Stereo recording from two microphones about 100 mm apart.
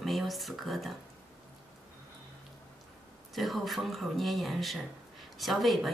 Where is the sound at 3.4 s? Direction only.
Centre (ahead or behind).